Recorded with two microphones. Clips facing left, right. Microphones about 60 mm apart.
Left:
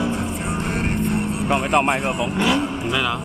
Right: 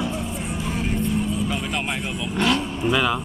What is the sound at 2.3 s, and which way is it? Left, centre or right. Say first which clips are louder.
Vehicle: even; centre.